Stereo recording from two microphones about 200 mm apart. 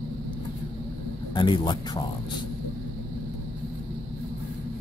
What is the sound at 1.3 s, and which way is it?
Speech, 25° left (ahead or behind).